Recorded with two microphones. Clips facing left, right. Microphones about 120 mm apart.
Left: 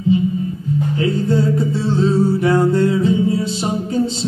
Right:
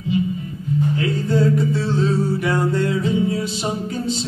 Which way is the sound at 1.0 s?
30° left (ahead or behind).